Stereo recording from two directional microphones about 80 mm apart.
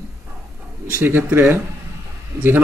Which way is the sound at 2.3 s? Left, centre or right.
Right.